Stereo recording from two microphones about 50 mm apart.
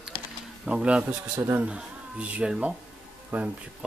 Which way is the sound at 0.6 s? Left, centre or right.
Right.